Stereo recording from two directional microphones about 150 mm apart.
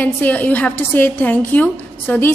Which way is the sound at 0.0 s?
10° left (ahead or behind).